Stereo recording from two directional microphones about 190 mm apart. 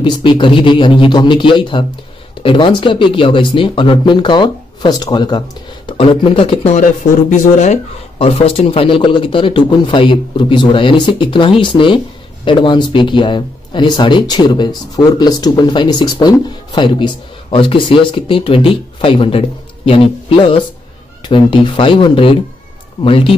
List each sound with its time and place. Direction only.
0.0 s speech: 25° left (ahead or behind)